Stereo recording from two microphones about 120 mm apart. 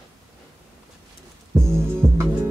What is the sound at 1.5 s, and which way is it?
Speech, 5° left (ahead or behind).